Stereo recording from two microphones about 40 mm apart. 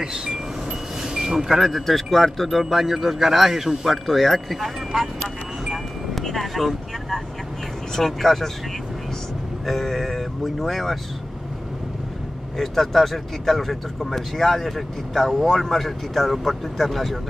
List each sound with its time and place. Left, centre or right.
0.0 s wind chime: centre
1.0 s a sound: centre
1.7 s speech: centre
6.2 s vehicle: centre
7.9 s speech: centre
9.7 s speech: centre
12.5 s speech: centre